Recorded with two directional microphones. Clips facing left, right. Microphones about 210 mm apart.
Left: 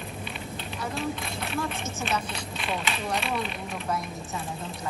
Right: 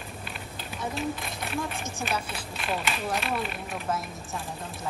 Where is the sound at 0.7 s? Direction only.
Centre (ahead or behind).